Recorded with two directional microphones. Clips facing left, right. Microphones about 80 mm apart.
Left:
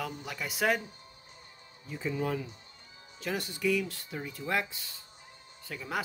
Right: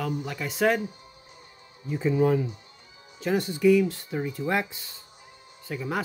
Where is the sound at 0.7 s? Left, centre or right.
Centre.